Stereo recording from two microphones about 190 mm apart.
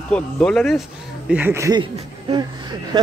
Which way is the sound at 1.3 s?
10° right (ahead or behind).